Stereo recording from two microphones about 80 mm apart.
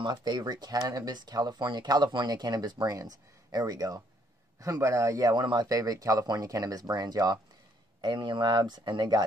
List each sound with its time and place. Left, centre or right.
0.0 s speech: right
5.4 s speech: right
8.0 s speech: right